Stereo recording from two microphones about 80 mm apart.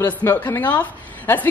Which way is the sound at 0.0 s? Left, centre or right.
Left.